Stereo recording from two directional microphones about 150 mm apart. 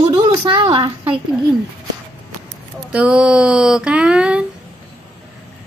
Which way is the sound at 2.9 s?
5° right (ahead or behind).